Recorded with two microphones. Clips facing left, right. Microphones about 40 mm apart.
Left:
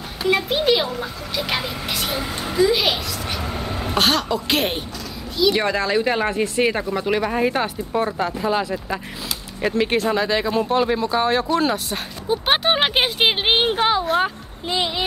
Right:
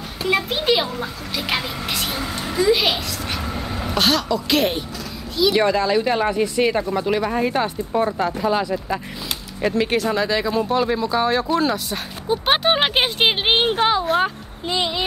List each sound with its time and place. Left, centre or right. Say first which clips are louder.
0.3 s speech: left 1 dB; centre
3.5 s a sound: left 2 dB; centre
4.3 s speech: right 2 dB; centre
5.4 s speech: right 2 dB; centre